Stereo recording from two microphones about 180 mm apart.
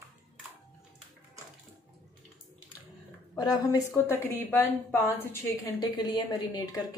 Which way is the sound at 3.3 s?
20° left (ahead or behind).